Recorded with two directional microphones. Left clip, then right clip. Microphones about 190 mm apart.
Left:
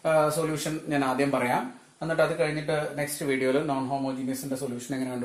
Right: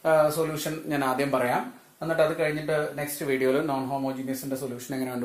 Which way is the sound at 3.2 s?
20° right (ahead or behind).